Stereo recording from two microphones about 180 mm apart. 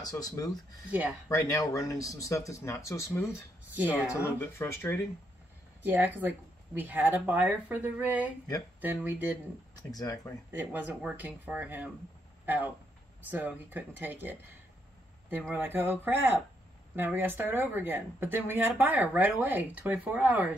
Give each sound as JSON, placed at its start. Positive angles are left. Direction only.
{"t": 0.0, "sound": "speech", "side_deg": 20}
{"t": 3.7, "sound": "speech", "side_deg": -10}
{"t": 4.1, "sound": "speech", "side_deg": 10}
{"t": 5.8, "sound": "speech", "side_deg": -10}
{"t": 9.8, "sound": "speech", "side_deg": 20}
{"t": 10.5, "sound": "speech", "side_deg": -10}